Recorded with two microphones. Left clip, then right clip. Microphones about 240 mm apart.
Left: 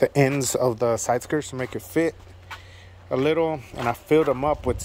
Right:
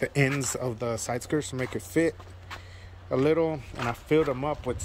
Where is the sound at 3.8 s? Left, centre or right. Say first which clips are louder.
Left 5 dB; left.